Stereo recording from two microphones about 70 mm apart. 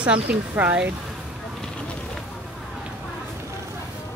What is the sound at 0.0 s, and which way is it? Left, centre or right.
Speech, centre.